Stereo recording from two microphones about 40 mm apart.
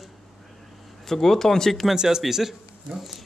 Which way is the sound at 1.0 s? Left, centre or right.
Centre.